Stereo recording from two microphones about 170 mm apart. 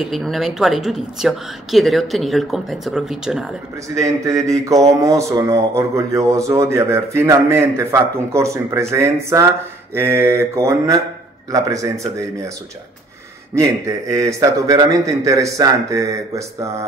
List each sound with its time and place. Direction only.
0.0 s speech: centre (ahead or behind)
4.5 s a man's voice: 20° right (ahead or behind)
13.6 s a man's voice: 20° right (ahead or behind)